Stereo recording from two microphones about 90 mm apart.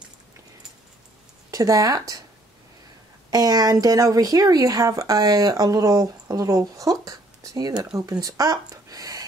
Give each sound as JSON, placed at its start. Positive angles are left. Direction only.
{"t": 1.5, "sound": "speech", "side_deg": -40}
{"t": 3.3, "sound": "speech", "side_deg": -45}